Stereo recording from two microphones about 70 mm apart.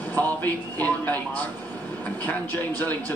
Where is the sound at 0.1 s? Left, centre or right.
Left.